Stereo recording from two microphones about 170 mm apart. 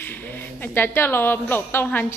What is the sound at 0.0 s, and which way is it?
A woman's voice, 10° left (ahead or behind).